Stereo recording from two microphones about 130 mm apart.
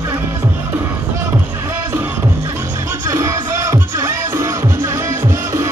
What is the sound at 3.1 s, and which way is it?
Music, 20° right (ahead or behind).